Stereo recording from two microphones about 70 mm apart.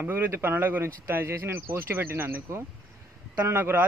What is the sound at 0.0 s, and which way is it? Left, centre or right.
Speech, right.